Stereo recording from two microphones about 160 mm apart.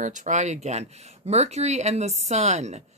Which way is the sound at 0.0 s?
50° right (ahead or behind).